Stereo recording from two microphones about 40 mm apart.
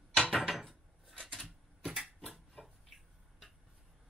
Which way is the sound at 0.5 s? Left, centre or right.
Centre.